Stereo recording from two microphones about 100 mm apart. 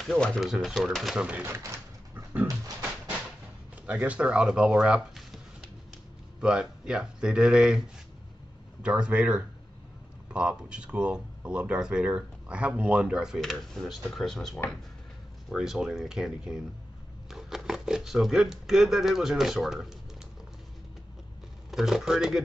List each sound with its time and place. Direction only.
0.0 s speech: 5° left (ahead or behind)
1.4 s a sound: 25° right (ahead or behind)
3.8 s speech: 15° right (ahead or behind)
6.4 s speech: 10° right (ahead or behind)
8.8 s speech: 10° right (ahead or behind)
21.6 s speech: 5° right (ahead or behind)